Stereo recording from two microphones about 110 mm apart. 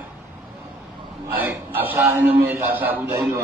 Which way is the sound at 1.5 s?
20° right (ahead or behind).